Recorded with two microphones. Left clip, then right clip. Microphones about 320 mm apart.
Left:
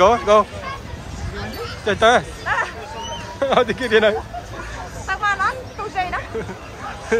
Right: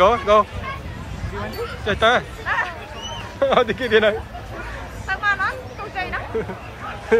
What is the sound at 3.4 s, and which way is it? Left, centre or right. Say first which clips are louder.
Speech: even; centre.